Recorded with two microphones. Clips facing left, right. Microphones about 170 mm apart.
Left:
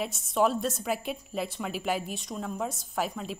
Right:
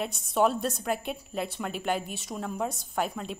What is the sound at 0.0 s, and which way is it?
A woman's voice, centre (ahead or behind).